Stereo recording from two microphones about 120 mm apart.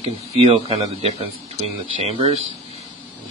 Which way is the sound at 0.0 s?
65° right (ahead or behind).